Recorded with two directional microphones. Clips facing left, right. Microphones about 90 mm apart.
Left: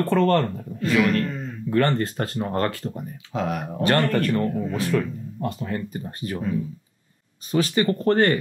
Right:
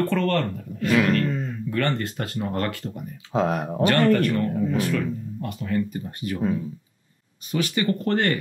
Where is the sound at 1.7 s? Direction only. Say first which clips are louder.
Left 5 dB; 35° left (ahead or behind).